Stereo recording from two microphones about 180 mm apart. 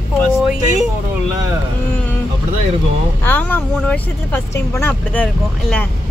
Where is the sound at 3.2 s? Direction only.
10° left (ahead or behind).